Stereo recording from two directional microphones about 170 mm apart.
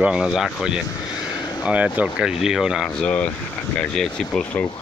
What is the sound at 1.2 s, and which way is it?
Vehicle, 25° left (ahead or behind).